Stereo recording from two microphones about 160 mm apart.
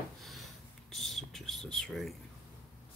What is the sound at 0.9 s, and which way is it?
Whispering, centre (ahead or behind).